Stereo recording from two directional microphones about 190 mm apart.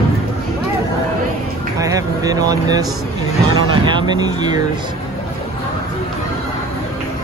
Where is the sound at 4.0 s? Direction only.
20° right (ahead or behind).